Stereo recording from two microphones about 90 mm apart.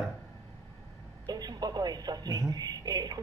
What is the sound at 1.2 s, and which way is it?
Music, 50° right (ahead or behind).